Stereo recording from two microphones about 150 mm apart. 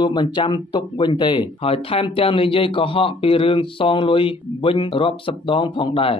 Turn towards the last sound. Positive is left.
turn(degrees=35)  # may be behind; listen again after turning